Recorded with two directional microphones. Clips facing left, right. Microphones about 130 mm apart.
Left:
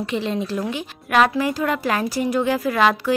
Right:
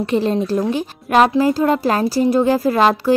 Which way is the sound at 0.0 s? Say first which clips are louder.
Right 6 dB; 40° right (ahead or behind).